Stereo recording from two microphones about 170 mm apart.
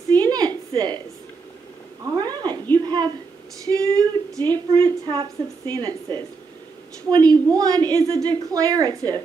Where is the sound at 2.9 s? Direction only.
25° right (ahead or behind).